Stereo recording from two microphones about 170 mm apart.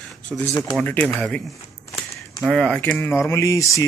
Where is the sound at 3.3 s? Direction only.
20° left (ahead or behind).